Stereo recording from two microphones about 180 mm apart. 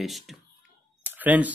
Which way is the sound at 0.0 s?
Centre (ahead or behind).